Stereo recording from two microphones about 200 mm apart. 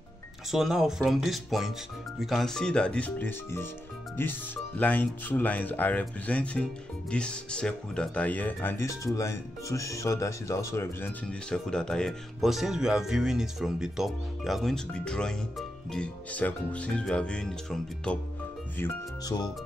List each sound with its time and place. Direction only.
0.5 s speech: centre (ahead or behind)
18.8 s speech: 20° left (ahead or behind)